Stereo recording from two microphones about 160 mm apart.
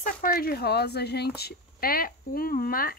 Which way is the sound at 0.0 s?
65° left (ahead or behind).